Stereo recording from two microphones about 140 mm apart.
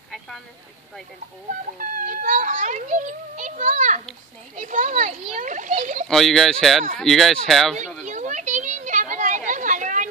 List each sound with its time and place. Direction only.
1.8 s a child's voice: 75° right (ahead or behind)
6.0 s speech: centre (ahead or behind)
8.0 s a sound: 60° right (ahead or behind)